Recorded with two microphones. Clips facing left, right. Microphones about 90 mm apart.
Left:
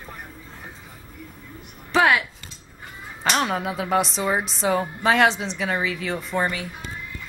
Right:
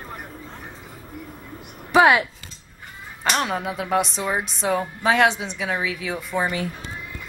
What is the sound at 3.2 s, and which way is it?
Speech, centre (ahead or behind).